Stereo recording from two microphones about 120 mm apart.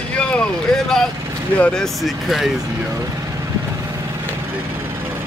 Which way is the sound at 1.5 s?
10° left (ahead or behind).